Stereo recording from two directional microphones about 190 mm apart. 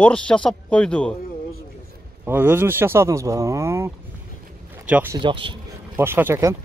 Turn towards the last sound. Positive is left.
turn(degrees=-10)  # may be behind; listen again after turning